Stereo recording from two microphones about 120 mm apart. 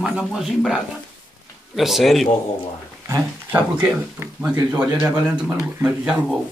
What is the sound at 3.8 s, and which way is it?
Speech, 15° right (ahead or behind).